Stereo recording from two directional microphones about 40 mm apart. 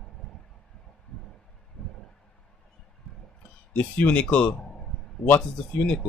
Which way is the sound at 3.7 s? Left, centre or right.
Left.